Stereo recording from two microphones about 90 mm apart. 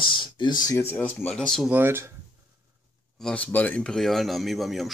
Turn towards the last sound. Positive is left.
turn(degrees=0)  # may be behind; listen again after turning